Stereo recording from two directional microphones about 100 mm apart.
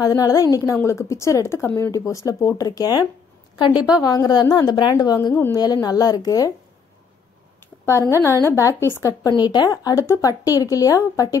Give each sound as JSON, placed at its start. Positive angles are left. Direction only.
{"t": 0.0, "sound": "a woman's voice", "side_deg": 40}
{"t": 8.0, "sound": "a woman's voice", "side_deg": 30}
{"t": 9.3, "sound": "speech", "side_deg": 45}